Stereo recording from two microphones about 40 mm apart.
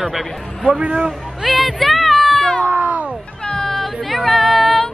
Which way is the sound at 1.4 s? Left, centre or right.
Centre.